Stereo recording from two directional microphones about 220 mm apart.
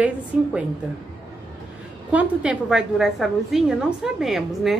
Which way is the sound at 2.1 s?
5° right (ahead or behind).